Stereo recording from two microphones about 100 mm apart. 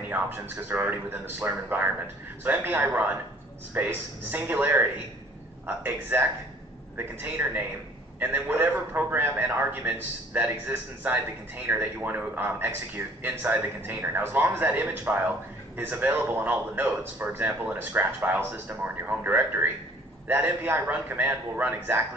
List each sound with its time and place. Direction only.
0.7 s a man's voice: 20° right (ahead or behind)